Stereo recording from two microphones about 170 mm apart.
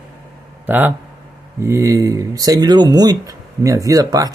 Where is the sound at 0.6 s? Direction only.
10° right (ahead or behind).